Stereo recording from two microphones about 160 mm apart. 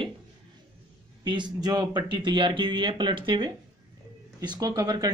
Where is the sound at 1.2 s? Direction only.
30° right (ahead or behind).